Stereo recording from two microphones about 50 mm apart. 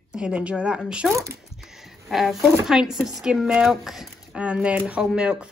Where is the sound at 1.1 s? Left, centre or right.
Right.